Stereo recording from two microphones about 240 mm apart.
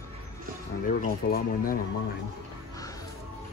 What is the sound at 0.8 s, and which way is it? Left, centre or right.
Speech, left.